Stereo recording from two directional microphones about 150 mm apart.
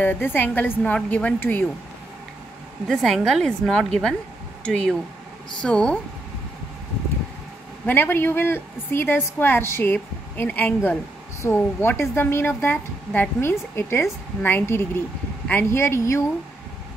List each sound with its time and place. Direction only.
0.0 s a woman's voice: 15° left (ahead or behind)
2.9 s a woman's voice: centre (ahead or behind)
7.8 s a woman's voice: 15° left (ahead or behind)